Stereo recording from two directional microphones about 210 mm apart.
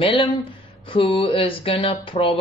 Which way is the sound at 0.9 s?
25° left (ahead or behind).